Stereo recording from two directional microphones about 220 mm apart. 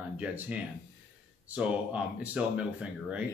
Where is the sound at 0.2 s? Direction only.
5° right (ahead or behind).